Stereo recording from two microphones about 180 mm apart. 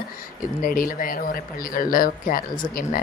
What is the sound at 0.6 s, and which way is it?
Speech, 50° left (ahead or behind).